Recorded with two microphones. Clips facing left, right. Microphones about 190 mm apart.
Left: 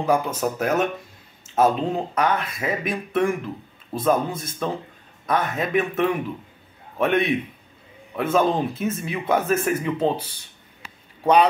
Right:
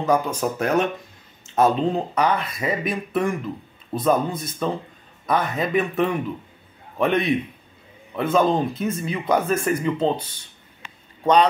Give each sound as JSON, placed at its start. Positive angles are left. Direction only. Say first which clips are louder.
{"t": 0.0, "sound": "speech", "louder": "right 1 dB", "side_deg": 10}